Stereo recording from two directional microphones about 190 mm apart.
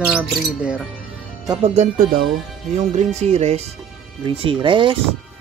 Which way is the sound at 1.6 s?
40° right (ahead or behind).